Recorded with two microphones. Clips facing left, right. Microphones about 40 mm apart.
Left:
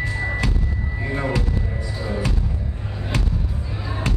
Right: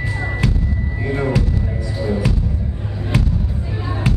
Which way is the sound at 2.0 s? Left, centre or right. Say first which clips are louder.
Right 6 dB; centre.